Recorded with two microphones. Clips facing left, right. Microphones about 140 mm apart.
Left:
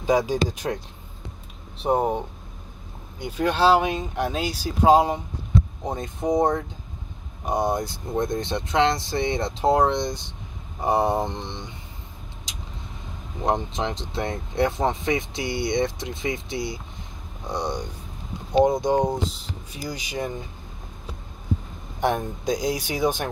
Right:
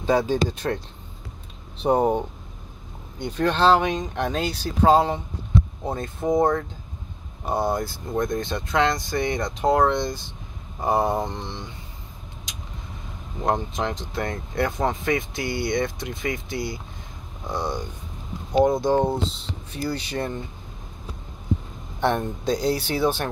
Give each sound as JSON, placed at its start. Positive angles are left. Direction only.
{"t": 0.0, "sound": "speech", "side_deg": 10}
{"t": 1.8, "sound": "speech", "side_deg": 5}
{"t": 13.5, "sound": "speech", "side_deg": 20}
{"t": 22.0, "sound": "speech", "side_deg": 10}